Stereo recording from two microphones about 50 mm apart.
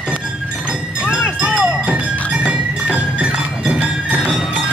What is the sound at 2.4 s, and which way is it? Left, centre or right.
Music, right.